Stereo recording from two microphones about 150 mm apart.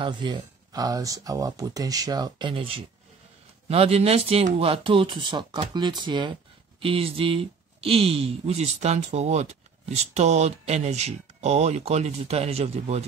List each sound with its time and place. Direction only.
0.0 s speech: 30° right (ahead or behind)